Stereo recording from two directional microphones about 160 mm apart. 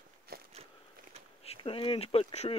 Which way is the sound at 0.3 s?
70° right (ahead or behind).